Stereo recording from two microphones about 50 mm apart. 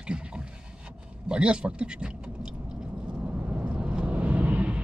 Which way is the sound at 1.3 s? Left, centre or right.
Right.